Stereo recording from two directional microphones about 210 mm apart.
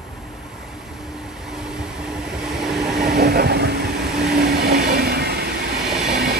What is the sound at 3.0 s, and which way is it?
Vehicle, 50° right (ahead or behind).